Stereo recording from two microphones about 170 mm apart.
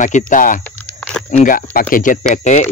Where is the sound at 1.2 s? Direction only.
50° left (ahead or behind).